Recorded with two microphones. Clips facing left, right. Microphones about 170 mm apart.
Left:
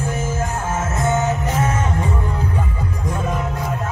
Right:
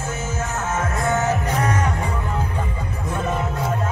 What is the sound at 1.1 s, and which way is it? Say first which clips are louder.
Music: left 1 dB; 20° left (ahead or behind).